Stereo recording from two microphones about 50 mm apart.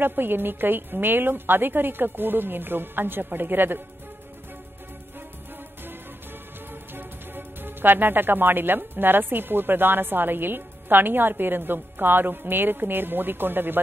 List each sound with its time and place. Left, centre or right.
0.0 s a woman's voice: right
6.7 s speech: right